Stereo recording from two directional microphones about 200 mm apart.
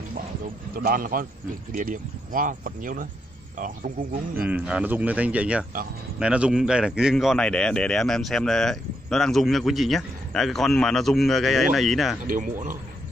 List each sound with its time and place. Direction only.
0.7 s speech: 45° right (ahead or behind)
4.5 s a man's voice: 5° right (ahead or behind)
12.3 s speech: 40° right (ahead or behind)